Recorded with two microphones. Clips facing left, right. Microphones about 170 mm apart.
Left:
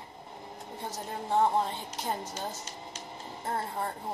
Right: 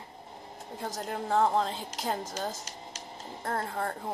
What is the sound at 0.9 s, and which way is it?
A woman's voice, 90° right.